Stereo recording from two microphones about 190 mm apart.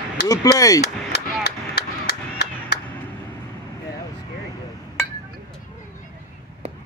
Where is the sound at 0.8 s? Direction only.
60° left (ahead or behind).